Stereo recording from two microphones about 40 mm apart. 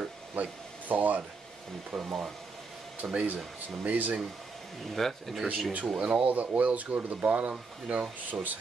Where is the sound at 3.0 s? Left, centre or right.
Right.